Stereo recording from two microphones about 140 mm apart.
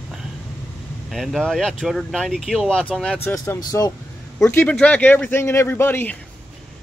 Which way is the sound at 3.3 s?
25° left (ahead or behind).